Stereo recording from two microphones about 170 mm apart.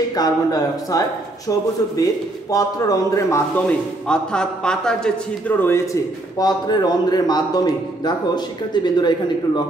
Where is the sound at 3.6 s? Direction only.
5° left (ahead or behind).